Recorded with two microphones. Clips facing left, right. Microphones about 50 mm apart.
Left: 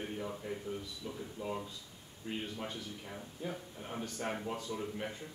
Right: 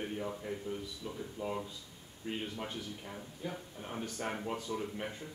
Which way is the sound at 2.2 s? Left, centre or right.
Right.